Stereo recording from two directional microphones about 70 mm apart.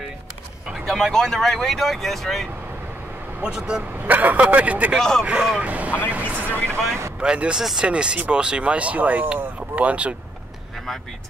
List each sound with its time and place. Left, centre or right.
0.7 s speech: centre
3.4 s speech: centre
4.0 s speech: right
4.9 s speech: centre
5.2 s speech: centre
7.2 s speech: centre